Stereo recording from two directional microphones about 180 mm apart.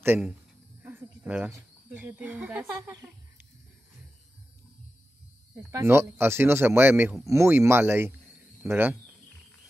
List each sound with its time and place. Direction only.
0.0 s speech: 10° right (ahead or behind)
2.9 s a sound: 15° right (ahead or behind)
5.7 s speech: 15° right (ahead or behind)